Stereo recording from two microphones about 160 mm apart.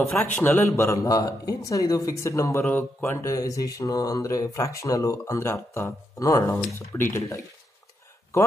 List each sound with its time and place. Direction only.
0.4 s a man's voice: 15° left (ahead or behind)